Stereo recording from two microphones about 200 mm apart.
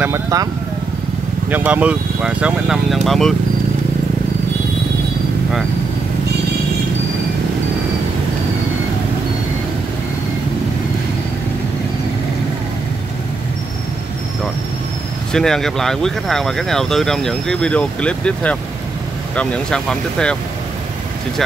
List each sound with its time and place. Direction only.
0.0 s speech: 15° right (ahead or behind)
1.5 s speech: 10° right (ahead or behind)
15.3 s speech: centre (ahead or behind)